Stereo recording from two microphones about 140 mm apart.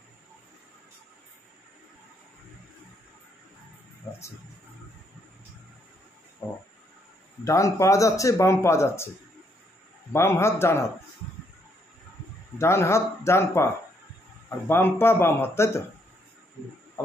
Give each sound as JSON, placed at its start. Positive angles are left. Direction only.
{"t": 4.1, "sound": "speech", "side_deg": 15}
{"t": 6.4, "sound": "cricket", "side_deg": 15}
{"t": 7.4, "sound": "speech", "side_deg": 20}
{"t": 10.1, "sound": "speech", "side_deg": 20}
{"t": 12.5, "sound": "speech", "side_deg": 20}
{"t": 14.7, "sound": "speech", "side_deg": 15}